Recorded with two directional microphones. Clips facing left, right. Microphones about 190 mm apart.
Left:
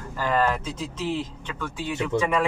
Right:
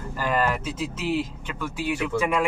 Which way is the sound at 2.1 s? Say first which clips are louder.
Left 2 dB; 20° left (ahead or behind).